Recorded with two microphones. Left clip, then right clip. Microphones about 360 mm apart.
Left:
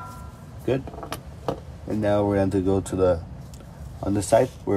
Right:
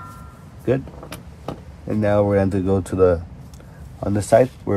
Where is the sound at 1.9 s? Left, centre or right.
Centre.